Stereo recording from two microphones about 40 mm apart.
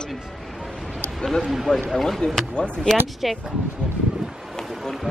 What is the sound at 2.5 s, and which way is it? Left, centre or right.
Speech, left.